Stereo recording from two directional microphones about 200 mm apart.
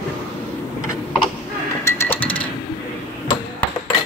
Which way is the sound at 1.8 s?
10° left (ahead or behind).